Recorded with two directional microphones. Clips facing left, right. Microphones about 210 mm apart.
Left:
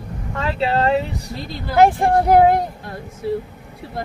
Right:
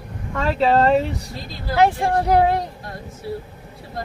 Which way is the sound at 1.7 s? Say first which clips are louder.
Left 3 dB; 50° left (ahead or behind).